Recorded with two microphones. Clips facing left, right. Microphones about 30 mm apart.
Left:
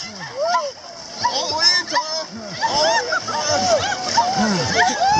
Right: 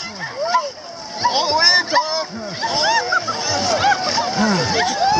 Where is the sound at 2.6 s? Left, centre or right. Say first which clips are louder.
Even; centre.